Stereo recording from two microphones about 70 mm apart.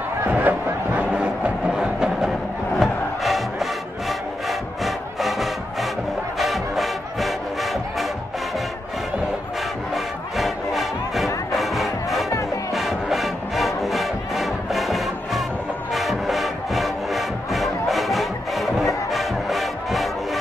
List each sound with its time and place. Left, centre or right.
0.3 s music: right; by 7.3 s centre
9.9 s music: centre